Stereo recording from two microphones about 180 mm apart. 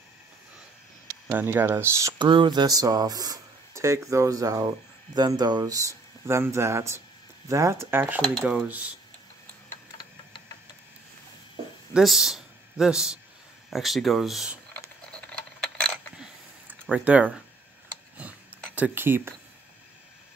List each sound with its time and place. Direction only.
1.2 s speech: 10° right (ahead or behind)
11.9 s speech: centre (ahead or behind)
16.2 s a sound: 5° right (ahead or behind)